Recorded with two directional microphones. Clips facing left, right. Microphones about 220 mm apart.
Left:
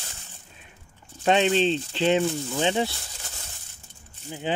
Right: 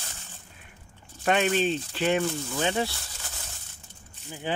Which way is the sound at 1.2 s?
25° left (ahead or behind).